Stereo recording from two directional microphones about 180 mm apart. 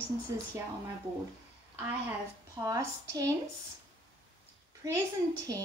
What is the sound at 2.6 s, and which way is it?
Speech, 20° right (ahead or behind).